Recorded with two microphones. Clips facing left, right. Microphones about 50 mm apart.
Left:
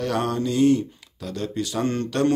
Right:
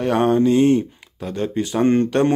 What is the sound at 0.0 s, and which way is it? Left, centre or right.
Speech, right.